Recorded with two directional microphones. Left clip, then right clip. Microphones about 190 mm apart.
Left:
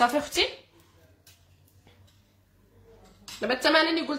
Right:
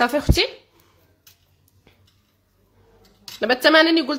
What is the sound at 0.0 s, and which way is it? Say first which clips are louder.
Speech: right 4 dB; 35° right (ahead or behind).